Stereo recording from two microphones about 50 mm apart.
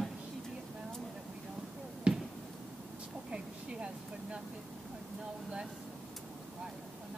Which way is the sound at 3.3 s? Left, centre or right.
Right.